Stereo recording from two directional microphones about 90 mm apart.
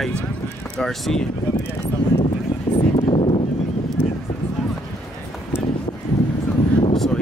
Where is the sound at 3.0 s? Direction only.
90° left.